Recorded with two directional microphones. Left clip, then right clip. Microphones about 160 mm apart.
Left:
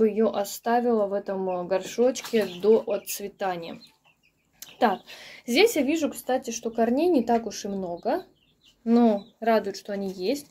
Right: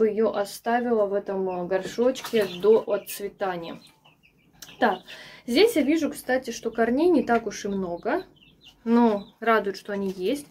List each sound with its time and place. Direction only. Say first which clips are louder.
0.0 s speech: even; 55° left (ahead or behind)
6.2 s speech: right 1 dB; 35° left (ahead or behind)